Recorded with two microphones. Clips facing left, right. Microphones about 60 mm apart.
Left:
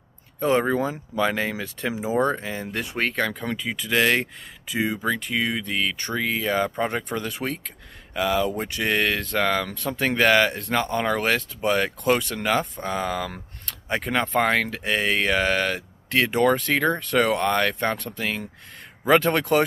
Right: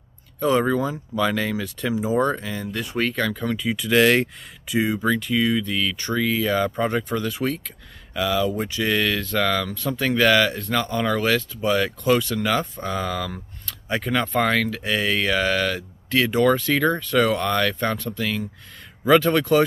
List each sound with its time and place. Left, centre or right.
0.4 s speech: left
14.4 s speech: left